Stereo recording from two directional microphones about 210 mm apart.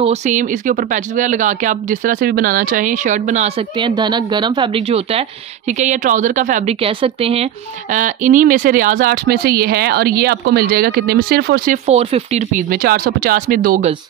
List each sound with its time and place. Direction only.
0.0 s speech: 30° right (ahead or behind)